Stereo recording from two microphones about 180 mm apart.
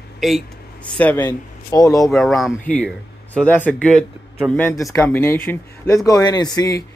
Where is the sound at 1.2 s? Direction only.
20° left (ahead or behind).